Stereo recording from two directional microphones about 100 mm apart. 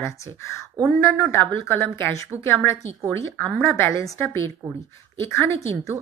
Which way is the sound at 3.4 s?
15° left (ahead or behind).